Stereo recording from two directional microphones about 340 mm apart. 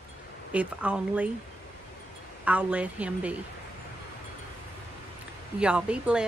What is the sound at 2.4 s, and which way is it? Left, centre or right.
Speech, centre.